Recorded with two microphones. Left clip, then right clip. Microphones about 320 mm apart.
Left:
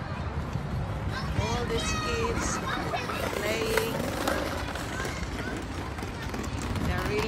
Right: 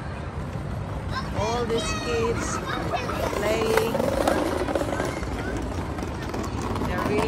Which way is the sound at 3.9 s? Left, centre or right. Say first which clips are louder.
Right 7 dB; right.